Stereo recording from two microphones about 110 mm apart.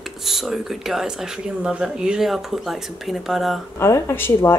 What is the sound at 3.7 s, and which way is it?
Speech, 25° left (ahead or behind).